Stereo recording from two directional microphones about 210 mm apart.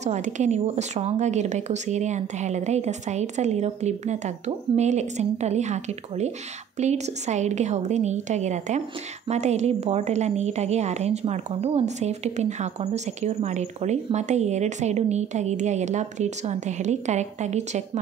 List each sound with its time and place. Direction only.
0.0 s a woman's voice: 35° right (ahead or behind)